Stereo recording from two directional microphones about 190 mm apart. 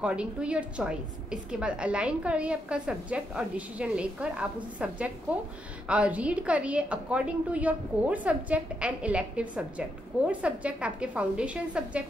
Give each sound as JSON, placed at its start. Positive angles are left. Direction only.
{"t": 0.0, "sound": "a woman's voice", "side_deg": -5}